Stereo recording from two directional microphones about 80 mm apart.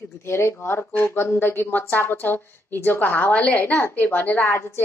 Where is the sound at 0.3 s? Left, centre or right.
Left.